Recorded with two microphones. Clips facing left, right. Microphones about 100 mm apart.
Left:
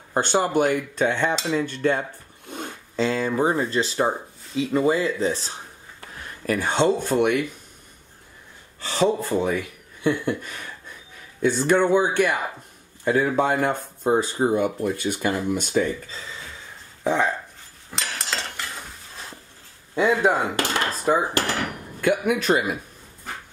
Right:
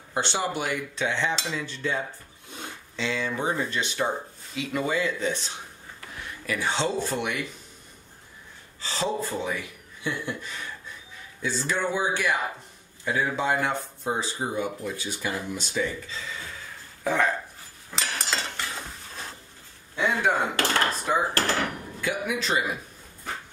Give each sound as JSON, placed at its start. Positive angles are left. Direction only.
{"t": 0.1, "sound": "speech", "side_deg": 45}
{"t": 2.5, "sound": "speech", "side_deg": 45}
{"t": 8.8, "sound": "speech", "side_deg": 60}
{"t": 17.0, "sound": "dog", "side_deg": 20}
{"t": 17.9, "sound": "cutlery", "side_deg": 0}
{"t": 20.2, "sound": "speech", "side_deg": 15}
{"t": 22.0, "sound": "speech", "side_deg": 55}